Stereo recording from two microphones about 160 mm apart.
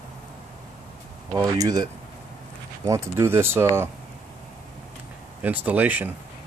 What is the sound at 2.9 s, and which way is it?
Speech, 15° right (ahead or behind).